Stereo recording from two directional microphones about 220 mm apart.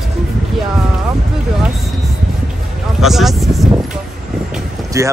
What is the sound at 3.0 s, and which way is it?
Speech, centre (ahead or behind).